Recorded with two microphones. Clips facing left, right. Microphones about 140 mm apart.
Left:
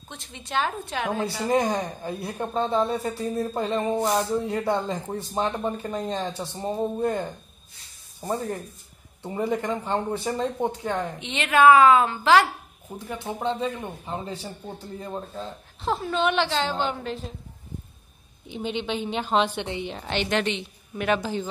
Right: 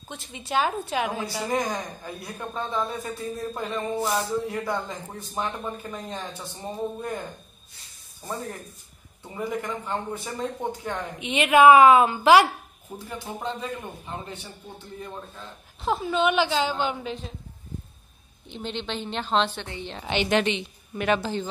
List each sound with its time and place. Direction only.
0.1 s a woman's voice: 5° right (ahead or behind)
1.5 s speech: 25° left (ahead or behind)
3.9 s speech: 20° left (ahead or behind)
11.1 s a woman's voice: 10° right (ahead or behind)
13.2 s speech: 25° left (ahead or behind)
15.8 s a woman's voice: 5° right (ahead or behind)
18.5 s a woman's voice: 10° left (ahead or behind)
19.9 s a woman's voice: centre (ahead or behind)